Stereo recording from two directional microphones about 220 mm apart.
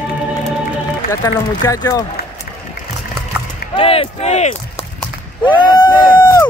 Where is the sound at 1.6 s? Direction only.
15° left (ahead or behind).